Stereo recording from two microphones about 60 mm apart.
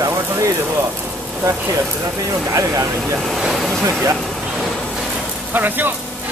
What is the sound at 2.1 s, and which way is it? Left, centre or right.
Speech, right.